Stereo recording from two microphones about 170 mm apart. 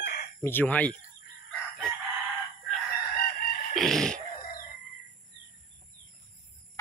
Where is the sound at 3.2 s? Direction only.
60° left (ahead or behind).